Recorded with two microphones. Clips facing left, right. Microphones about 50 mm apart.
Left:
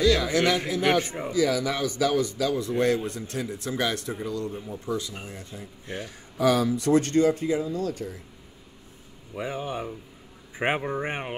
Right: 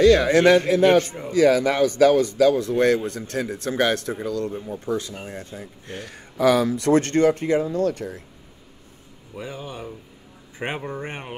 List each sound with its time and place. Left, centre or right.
0.0 s speech: right
1.0 s speech: centre
1.3 s speech: right
9.4 s speech: centre